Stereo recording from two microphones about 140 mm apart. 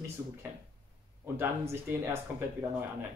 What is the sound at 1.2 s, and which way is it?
Speech, 15° right (ahead or behind).